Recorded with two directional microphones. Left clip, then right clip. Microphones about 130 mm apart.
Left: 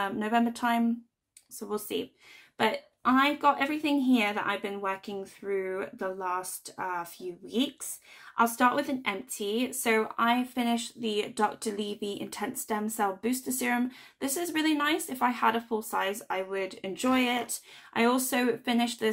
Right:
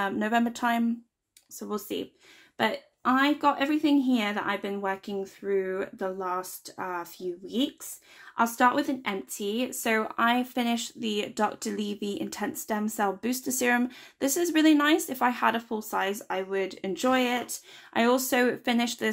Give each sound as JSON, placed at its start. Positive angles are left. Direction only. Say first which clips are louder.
{"t": 0.0, "sound": "a woman's voice", "louder": "right 1 dB", "side_deg": -40}
{"t": 2.5, "sound": "a woman's voice", "louder": "even", "side_deg": -45}
{"t": 8.4, "sound": "speech", "louder": "right 1 dB", "side_deg": -45}